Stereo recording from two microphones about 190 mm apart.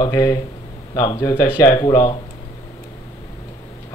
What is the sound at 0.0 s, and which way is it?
Speech, 20° left (ahead or behind).